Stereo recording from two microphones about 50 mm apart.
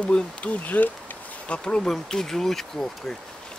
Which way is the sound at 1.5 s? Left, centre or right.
Left.